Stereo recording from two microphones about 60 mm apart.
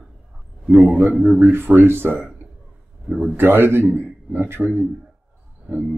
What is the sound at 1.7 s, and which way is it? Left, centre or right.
Speech, right.